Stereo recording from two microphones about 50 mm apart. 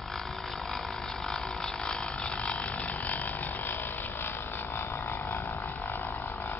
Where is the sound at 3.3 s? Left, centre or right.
Left.